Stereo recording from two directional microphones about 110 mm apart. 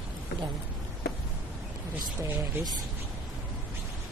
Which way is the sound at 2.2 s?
15° right (ahead or behind).